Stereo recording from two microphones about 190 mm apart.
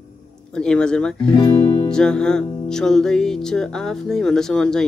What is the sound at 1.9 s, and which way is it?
Music, 5° left (ahead or behind).